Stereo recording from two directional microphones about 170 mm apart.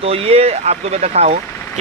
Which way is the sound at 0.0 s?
35° right (ahead or behind).